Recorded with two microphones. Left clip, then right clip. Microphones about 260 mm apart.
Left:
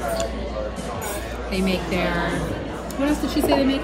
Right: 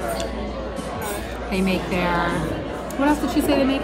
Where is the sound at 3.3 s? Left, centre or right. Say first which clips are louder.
Even; centre.